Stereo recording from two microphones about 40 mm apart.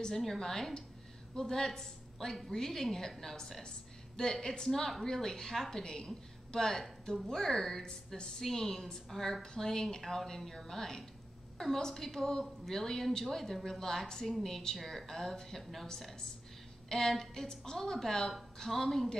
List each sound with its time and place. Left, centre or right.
0.1 s a woman's voice: centre
16.9 s a woman's voice: centre